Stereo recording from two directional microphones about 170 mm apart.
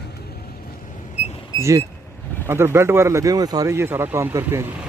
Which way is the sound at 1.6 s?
20° right (ahead or behind).